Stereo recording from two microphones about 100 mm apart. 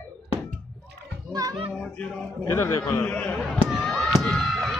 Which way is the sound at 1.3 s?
40° right (ahead or behind).